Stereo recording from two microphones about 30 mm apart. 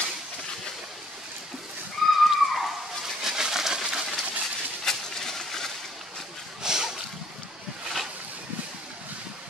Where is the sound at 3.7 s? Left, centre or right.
Right.